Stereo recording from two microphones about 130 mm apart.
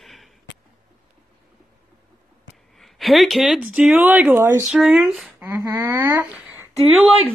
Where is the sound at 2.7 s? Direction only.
Centre (ahead or behind).